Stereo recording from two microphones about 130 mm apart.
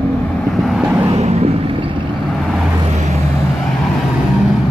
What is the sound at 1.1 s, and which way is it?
Vehicle, 55° right (ahead or behind).